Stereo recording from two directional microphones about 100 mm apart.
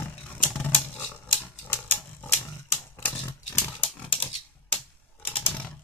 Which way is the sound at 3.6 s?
20° left (ahead or behind).